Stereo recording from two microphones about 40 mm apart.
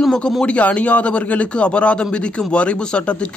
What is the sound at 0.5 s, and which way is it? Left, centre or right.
A man's voice, left.